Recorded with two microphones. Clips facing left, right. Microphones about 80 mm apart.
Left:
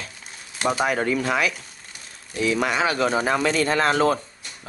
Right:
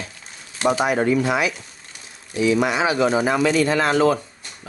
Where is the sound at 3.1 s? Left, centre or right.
Right.